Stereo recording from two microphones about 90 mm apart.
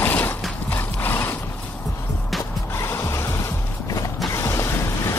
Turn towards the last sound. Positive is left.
turn(degrees=35)  # may be behind; listen again after turning